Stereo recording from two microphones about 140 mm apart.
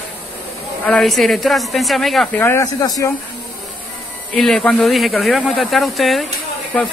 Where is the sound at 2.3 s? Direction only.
20° left (ahead or behind).